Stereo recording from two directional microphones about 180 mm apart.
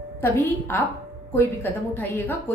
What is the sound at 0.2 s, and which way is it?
A woman's voice, 10° left (ahead or behind).